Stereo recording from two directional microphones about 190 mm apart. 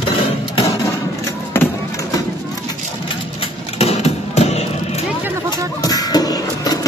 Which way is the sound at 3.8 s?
35° left (ahead or behind).